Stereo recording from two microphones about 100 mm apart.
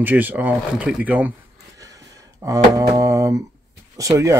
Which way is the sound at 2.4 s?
35° right (ahead or behind).